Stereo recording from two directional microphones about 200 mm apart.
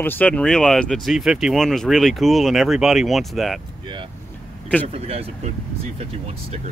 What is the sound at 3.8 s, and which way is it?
Speech, 25° right (ahead or behind).